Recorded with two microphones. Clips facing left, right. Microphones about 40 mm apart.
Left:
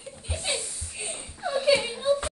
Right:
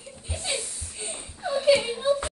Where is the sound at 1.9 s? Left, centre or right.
Right.